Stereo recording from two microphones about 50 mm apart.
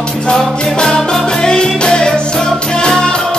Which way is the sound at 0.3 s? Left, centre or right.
Centre.